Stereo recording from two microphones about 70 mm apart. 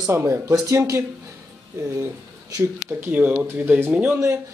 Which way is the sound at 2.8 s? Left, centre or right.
Right.